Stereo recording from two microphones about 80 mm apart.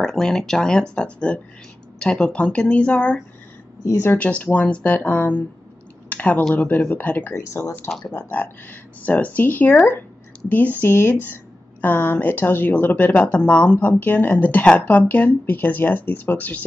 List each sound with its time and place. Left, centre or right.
0.0 s speech: centre
6.0 s a sound: centre
6.5 s speech: left
7.3 s speech: left
8.0 s speech: left